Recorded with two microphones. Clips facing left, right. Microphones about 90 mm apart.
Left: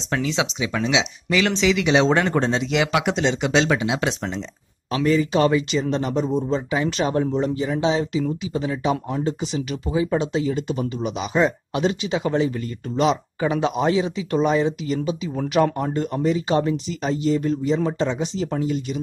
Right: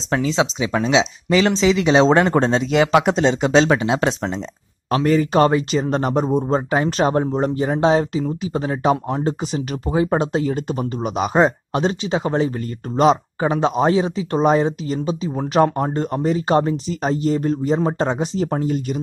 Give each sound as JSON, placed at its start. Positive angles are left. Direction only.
{"t": 0.1, "sound": "speech", "side_deg": -35}